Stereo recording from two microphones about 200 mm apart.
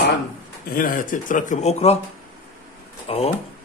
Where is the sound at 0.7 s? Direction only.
45° left (ahead or behind).